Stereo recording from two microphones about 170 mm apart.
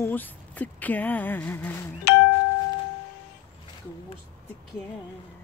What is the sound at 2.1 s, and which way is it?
Doorbell, 75° left (ahead or behind).